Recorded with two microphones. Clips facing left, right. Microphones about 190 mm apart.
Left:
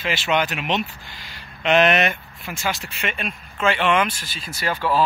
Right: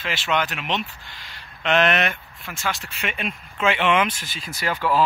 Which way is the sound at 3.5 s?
20° right (ahead or behind).